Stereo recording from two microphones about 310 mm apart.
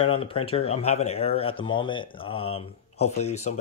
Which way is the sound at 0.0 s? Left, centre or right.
Centre.